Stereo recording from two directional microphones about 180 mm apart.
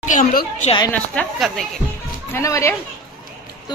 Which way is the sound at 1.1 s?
5° left (ahead or behind).